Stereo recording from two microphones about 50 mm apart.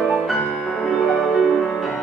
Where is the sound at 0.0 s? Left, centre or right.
Centre.